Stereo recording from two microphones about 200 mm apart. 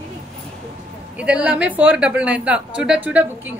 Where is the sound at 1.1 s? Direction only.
5° right (ahead or behind).